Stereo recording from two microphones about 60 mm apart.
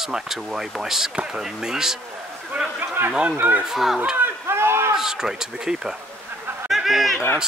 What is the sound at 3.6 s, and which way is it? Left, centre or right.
Speech, centre.